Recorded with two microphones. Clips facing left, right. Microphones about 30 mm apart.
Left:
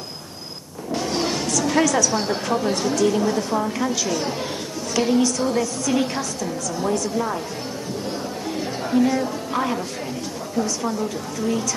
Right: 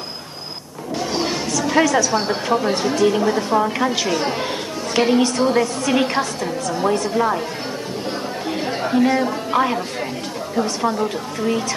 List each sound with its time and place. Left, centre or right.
0.9 s a woman's voice: centre; by 7.4 s right
8.5 s chatter: right
10.5 s a woman's voice: right